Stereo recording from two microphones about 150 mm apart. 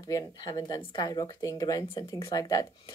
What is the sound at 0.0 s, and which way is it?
Speech, 25° left (ahead or behind).